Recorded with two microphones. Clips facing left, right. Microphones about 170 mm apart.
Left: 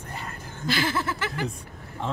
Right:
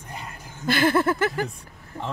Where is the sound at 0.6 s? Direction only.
55° right (ahead or behind).